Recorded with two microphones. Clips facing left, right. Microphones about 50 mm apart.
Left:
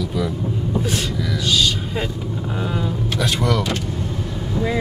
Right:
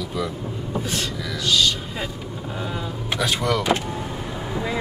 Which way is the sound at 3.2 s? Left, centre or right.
Centre.